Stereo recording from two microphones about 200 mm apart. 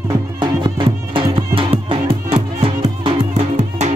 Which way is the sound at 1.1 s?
25° right (ahead or behind).